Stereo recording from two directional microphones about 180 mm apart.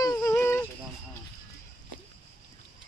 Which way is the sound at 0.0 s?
20° left (ahead or behind).